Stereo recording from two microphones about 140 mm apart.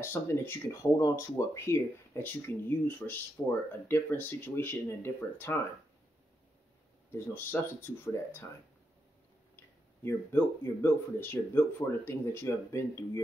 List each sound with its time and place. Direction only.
0.0 s speech: 15° left (ahead or behind)
7.1 s speech: 15° left (ahead or behind)
9.6 s speech: 20° left (ahead or behind)